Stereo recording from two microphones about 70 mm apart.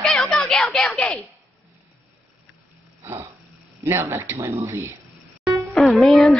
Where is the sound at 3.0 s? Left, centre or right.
Right.